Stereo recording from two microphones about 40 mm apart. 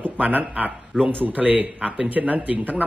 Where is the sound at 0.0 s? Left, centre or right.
Right.